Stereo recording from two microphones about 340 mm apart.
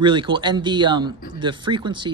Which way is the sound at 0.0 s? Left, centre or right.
Centre.